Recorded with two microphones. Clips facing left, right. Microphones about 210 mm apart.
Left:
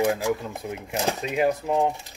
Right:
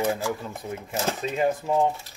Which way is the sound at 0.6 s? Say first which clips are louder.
Left 1 dB; centre (ahead or behind).